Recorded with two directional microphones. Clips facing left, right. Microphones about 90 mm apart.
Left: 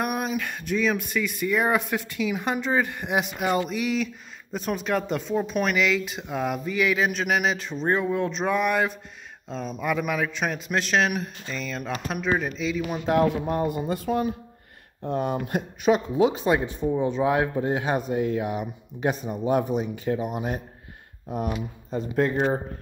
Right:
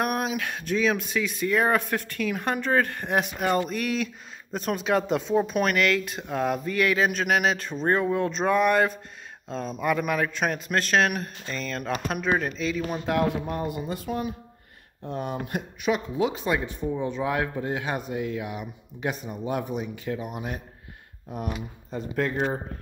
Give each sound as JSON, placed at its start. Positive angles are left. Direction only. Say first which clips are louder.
{"t": 0.0, "sound": "speech", "louder": "even", "side_deg": 0}
{"t": 9.8, "sound": "speech", "louder": "right 1 dB", "side_deg": 0}
{"t": 13.0, "sound": "speech", "louder": "left 4 dB", "side_deg": 30}
{"t": 13.7, "sound": "speech", "louder": "left 4 dB", "side_deg": 45}
{"t": 21.9, "sound": "speech", "louder": "left 4 dB", "side_deg": 20}